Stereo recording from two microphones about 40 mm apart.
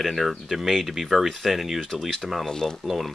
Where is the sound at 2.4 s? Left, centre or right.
Centre.